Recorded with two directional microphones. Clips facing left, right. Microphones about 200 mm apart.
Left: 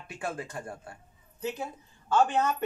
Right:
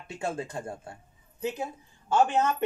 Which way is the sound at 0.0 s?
25° right (ahead or behind).